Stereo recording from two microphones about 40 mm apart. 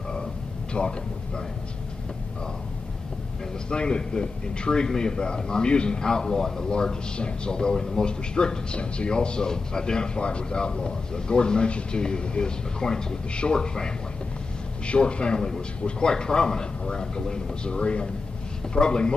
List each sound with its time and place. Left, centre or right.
0.7 s speech: left
3.7 s a man's voice: left